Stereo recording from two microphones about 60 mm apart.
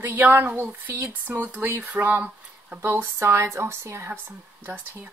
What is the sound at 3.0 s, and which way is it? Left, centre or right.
Speech, right.